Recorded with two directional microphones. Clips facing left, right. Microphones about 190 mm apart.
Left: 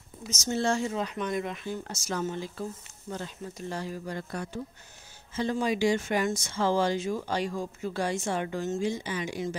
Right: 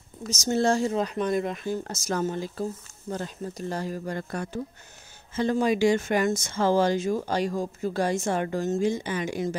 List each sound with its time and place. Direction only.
0.3 s speech: 40° right (ahead or behind)